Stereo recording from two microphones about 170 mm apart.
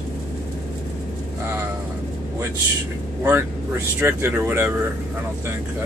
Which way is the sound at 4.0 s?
15° right (ahead or behind).